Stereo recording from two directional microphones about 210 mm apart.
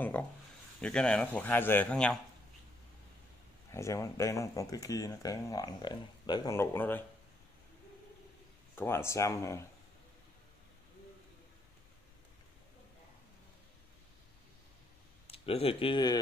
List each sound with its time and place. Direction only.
0.0 s speech: 10° left (ahead or behind)
3.7 s speech: 15° left (ahead or behind)
8.7 s speech: 10° left (ahead or behind)
15.2 s speech: 25° left (ahead or behind)